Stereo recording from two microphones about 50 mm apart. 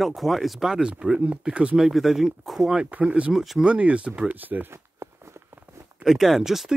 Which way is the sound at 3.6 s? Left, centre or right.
Right.